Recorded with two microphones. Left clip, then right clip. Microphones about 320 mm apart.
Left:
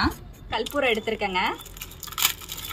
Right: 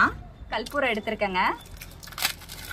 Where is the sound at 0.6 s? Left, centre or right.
Centre.